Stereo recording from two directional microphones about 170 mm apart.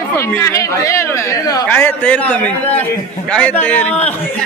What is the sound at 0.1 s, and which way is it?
Speech, 20° left (ahead or behind).